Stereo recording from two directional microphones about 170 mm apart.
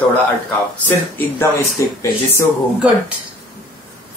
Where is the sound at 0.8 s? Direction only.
10° left (ahead or behind).